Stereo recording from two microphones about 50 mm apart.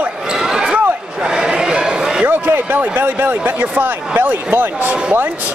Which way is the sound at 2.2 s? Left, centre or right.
Right.